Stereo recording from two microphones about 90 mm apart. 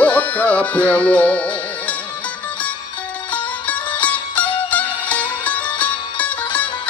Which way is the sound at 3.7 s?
15° left (ahead or behind).